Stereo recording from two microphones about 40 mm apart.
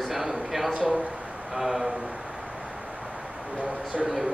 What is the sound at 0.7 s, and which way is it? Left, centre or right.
Speech, right.